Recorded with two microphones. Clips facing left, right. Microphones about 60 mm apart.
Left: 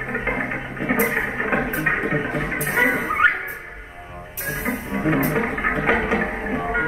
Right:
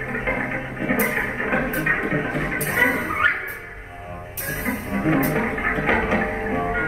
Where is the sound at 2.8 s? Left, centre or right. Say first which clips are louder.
Left 2 dB; centre.